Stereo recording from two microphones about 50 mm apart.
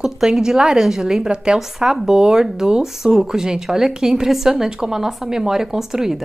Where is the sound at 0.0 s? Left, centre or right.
Centre.